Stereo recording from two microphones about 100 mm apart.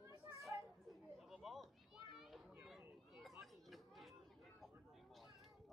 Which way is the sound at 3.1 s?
Centre (ahead or behind).